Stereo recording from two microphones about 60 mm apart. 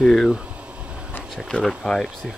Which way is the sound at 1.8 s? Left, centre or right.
Centre.